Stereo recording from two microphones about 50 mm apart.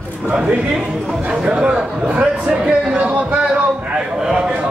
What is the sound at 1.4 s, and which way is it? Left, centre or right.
Speech, centre.